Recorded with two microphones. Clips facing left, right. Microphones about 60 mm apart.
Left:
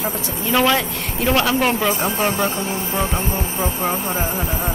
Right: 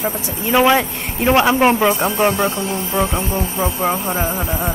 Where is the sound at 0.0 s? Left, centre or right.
Right.